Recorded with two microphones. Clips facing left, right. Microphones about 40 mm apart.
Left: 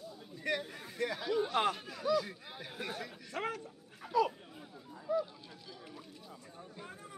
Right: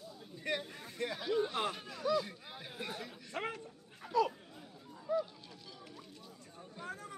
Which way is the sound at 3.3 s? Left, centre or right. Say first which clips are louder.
Left 2 dB; centre.